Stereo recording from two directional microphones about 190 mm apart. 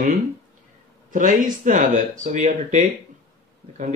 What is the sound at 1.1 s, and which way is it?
Speech, 40° right (ahead or behind).